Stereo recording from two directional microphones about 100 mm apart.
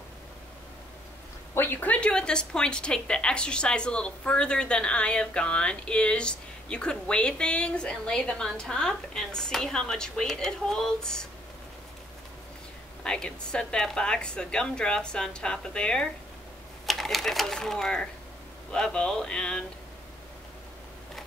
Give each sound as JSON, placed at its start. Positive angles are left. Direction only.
{"t": 1.5, "sound": "a woman's voice", "side_deg": 20}
{"t": 13.0, "sound": "a woman's voice", "side_deg": 10}